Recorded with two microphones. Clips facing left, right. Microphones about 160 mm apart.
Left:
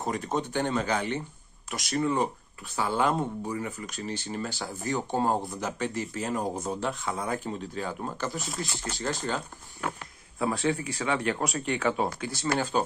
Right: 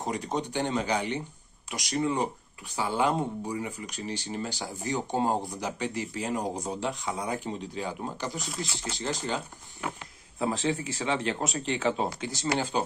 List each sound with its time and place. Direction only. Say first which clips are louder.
0.0 s speech: left 1 dB; 15° right (ahead or behind)
10.4 s speech: left 1 dB; 25° right (ahead or behind)